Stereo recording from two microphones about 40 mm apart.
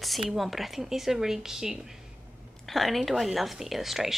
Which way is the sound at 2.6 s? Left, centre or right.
Centre.